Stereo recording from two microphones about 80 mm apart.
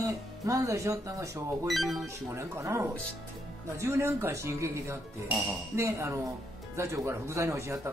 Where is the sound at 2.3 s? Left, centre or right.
Right.